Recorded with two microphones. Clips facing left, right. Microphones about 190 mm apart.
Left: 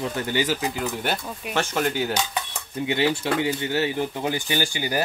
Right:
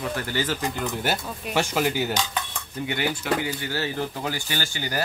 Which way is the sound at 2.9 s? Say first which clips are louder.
Left 3 dB; 25° left (ahead or behind).